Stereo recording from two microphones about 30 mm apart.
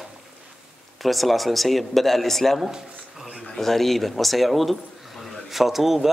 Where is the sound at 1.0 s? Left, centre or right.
Centre.